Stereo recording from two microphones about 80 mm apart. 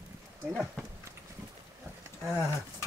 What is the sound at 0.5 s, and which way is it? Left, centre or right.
Speech, centre.